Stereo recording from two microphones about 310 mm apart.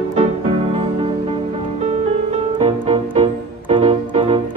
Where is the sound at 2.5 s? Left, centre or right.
Centre.